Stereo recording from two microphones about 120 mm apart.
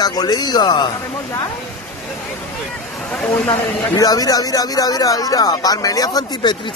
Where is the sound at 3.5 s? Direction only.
30° left (ahead or behind).